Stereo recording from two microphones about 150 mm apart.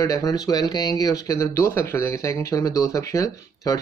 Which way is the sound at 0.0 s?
20° left (ahead or behind).